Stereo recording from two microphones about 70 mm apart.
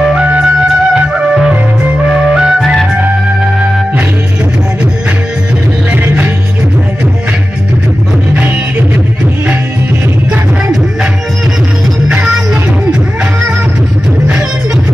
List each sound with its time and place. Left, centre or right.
0.0 s music: centre
5.9 s music: right
12.1 s music: centre